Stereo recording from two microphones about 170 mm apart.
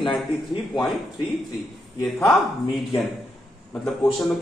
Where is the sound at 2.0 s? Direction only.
5° left (ahead or behind).